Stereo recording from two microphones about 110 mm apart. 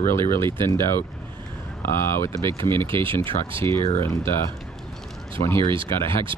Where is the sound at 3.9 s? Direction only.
25° left (ahead or behind).